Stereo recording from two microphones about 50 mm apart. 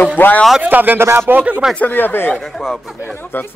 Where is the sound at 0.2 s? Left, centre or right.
Left.